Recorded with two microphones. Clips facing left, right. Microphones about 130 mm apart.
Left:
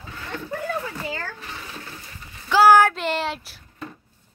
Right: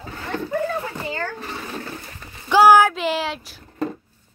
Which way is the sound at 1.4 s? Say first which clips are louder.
Right 6 dB; 45° right (ahead or behind).